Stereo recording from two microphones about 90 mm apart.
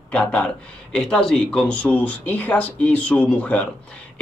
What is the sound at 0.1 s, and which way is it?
Speech, 15° left (ahead or behind).